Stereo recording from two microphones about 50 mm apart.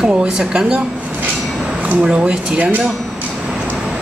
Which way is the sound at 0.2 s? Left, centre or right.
Centre.